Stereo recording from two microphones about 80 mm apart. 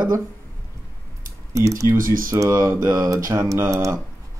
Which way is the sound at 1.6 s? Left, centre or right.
Right.